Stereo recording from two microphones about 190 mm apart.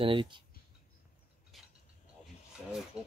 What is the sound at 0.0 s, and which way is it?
Speech, 25° right (ahead or behind).